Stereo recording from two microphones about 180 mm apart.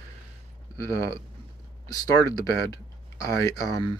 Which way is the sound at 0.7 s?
20° left (ahead or behind).